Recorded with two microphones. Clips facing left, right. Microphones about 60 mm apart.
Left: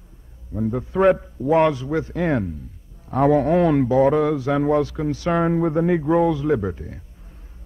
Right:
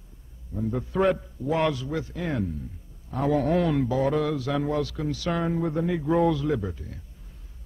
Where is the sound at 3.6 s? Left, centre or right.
Left.